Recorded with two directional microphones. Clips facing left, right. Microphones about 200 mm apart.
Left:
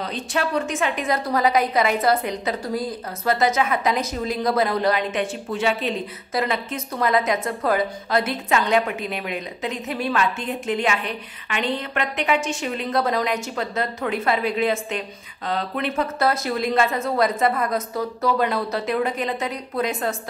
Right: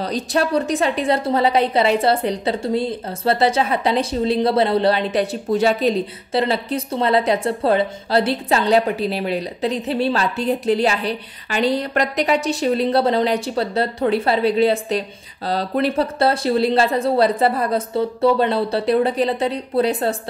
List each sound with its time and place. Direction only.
0.0 s a woman's voice: 35° right (ahead or behind)